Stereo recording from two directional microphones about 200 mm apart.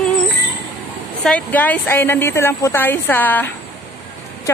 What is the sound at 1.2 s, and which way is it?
A woman's voice, 5° left (ahead or behind).